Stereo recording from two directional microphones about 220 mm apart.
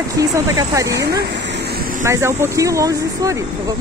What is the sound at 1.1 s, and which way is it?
Waterfall, 50° right (ahead or behind).